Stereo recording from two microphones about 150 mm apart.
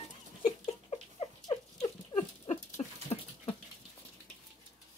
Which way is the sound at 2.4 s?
50° left (ahead or behind).